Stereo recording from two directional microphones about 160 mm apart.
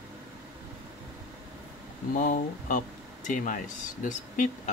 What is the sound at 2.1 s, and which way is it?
Speech, 55° left (ahead or behind).